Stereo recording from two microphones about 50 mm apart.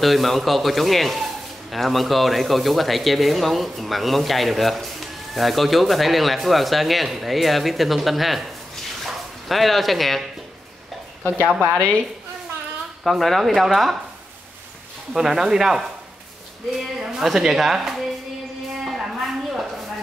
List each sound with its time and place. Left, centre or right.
0.0 s a man's voice: centre
9.0 s dog: centre
11.7 s a woman's voice: centre
13.0 s a man's voice: centre
15.1 s a woman's voice: centre
18.9 s a sound: centre